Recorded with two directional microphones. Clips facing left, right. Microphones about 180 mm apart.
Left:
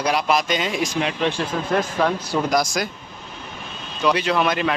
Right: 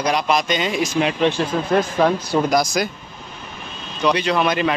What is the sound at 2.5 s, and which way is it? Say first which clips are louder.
Speech: right 2 dB; 5° right (ahead or behind).